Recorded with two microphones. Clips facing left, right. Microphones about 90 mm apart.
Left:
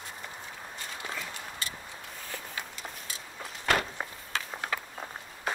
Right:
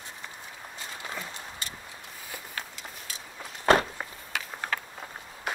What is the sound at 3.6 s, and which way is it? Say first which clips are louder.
Walk: right 6 dB; 30° right (ahead or behind).